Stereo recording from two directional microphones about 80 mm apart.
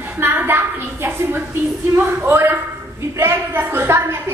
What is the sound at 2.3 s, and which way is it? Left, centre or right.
A woman's voice, right.